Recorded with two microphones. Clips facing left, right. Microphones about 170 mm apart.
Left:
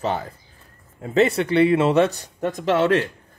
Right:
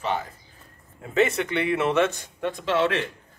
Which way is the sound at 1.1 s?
35° left (ahead or behind).